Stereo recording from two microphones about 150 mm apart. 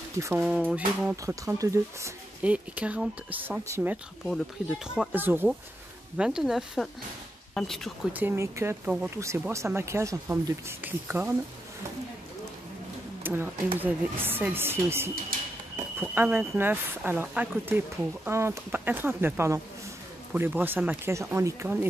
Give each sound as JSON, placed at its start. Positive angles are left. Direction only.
{"t": 0.2, "sound": "speech", "side_deg": -10}
{"t": 1.1, "sound": "speech", "side_deg": -20}
{"t": 2.4, "sound": "speech", "side_deg": -10}
{"t": 4.3, "sound": "speech", "side_deg": -5}
{"t": 8.1, "sound": "speech", "side_deg": -15}
{"t": 13.2, "sound": "speech", "side_deg": -15}